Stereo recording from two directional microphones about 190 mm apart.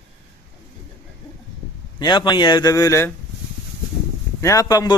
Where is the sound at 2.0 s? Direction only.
25° left (ahead or behind).